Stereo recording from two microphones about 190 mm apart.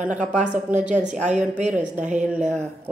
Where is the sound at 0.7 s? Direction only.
40° right (ahead or behind).